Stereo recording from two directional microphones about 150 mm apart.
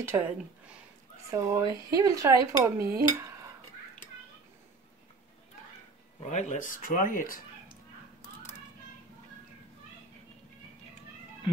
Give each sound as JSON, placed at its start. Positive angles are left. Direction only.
{"t": 0.0, "sound": "speech", "side_deg": -15}
{"t": 1.3, "sound": "speech", "side_deg": -25}
{"t": 6.2, "sound": "speech", "side_deg": 50}
{"t": 8.4, "sound": "a sound", "side_deg": 50}